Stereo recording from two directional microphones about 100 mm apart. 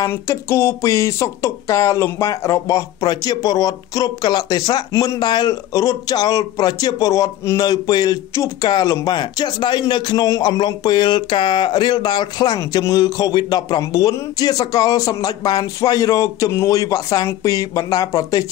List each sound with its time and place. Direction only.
0.0 s a man's voice: 25° left (ahead or behind)